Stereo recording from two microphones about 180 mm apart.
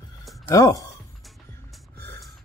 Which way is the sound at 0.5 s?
20° left (ahead or behind).